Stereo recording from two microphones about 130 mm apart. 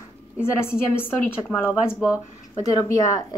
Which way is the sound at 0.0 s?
20° left (ahead or behind).